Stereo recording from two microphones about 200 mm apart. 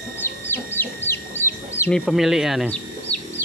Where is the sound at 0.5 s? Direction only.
10° left (ahead or behind).